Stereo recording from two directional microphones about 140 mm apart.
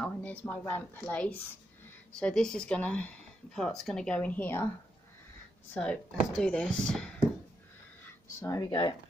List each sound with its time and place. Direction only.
0.0 s a woman's voice: 10° left (ahead or behind)
5.8 s speech: 5° left (ahead or behind)
8.4 s speech: 25° left (ahead or behind)